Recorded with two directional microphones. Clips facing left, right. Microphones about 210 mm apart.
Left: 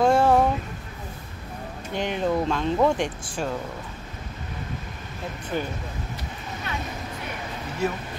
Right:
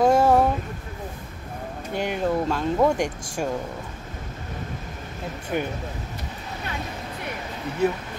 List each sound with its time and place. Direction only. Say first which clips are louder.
0.0 s a sound: right 1 dB; 10° right (ahead or behind)
2.0 s speech: even; 10° right (ahead or behind)
5.5 s speech: right 2 dB; 15° right (ahead or behind)